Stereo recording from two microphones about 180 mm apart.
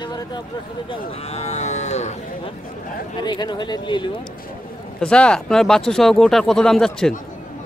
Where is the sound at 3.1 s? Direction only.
25° left (ahead or behind).